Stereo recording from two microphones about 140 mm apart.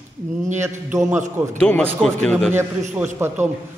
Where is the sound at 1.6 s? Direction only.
10° left (ahead or behind).